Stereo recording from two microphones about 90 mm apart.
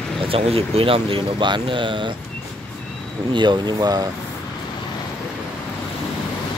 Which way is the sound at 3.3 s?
55° right (ahead or behind).